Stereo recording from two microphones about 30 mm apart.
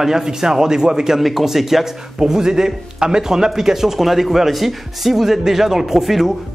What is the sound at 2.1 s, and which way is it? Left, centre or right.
Speech, right.